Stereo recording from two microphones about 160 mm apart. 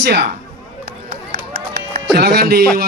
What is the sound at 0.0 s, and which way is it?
Speech, 90° right.